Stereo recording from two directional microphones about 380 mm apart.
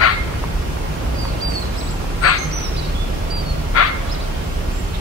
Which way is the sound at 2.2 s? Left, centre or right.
Left.